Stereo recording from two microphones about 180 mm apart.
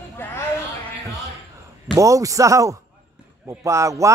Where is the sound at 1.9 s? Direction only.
20° right (ahead or behind).